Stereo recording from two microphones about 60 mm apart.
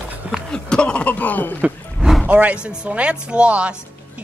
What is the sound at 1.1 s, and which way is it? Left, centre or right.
Speech, left.